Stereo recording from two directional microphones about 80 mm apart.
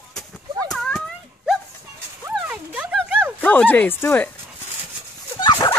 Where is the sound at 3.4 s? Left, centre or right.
Left.